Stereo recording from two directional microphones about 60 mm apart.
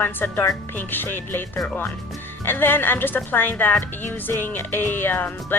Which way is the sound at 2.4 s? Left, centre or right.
Left.